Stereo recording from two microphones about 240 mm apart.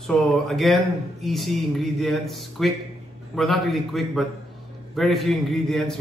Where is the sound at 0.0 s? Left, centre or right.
Centre.